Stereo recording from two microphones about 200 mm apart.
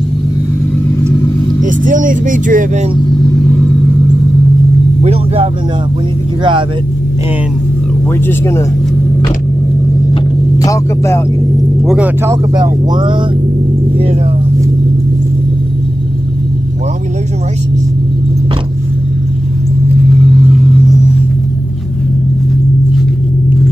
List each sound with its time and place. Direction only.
1.6 s speech: 40° right (ahead or behind)
5.0 s speech: 30° right (ahead or behind)
8.3 s speech: 15° left (ahead or behind)
10.6 s speech: 15° left (ahead or behind)
11.8 s speech: centre (ahead or behind)
12.3 s speech: 20° right (ahead or behind)